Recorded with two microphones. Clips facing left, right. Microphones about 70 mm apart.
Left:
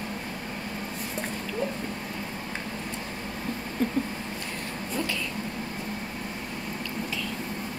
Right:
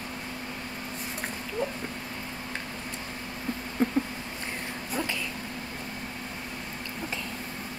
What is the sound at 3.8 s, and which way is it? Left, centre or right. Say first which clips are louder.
Rodents: right 1 dB; right.